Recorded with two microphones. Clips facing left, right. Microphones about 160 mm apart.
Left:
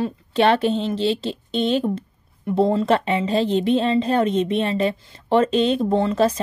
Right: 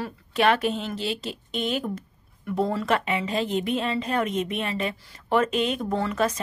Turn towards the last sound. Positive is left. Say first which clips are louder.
# left 6 dB
turn(degrees=30)  # may be behind; listen again after turning